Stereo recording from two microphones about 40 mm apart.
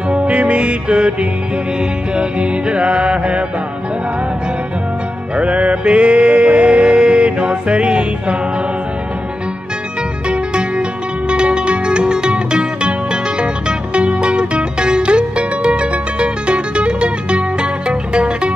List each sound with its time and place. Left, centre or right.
0.1 s music: right
5.3 s music: right
10.2 s music: right